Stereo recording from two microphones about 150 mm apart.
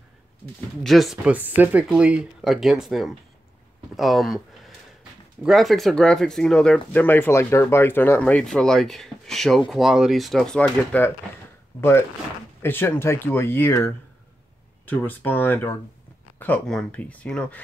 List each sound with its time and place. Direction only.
0.8 s speech: centre (ahead or behind)
12.6 s speech: 15° left (ahead or behind)